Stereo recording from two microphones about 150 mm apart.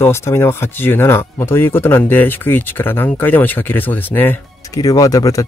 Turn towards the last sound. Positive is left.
turn(degrees=20)  # may be behind; listen again after turning